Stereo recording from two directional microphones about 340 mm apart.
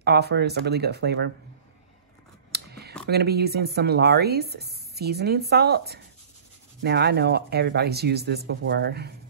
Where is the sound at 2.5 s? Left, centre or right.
Right.